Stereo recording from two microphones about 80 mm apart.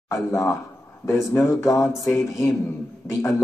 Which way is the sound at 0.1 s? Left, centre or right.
Left.